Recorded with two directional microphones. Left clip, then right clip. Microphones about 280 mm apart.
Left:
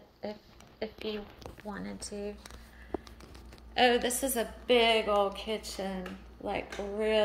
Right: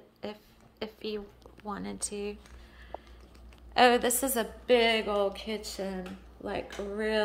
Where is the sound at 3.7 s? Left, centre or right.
Centre.